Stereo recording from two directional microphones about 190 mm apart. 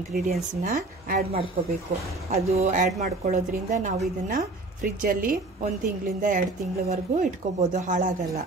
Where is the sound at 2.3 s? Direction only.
35° right (ahead or behind).